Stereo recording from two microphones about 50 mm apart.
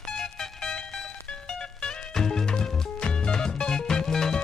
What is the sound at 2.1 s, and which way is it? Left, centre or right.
Music, centre.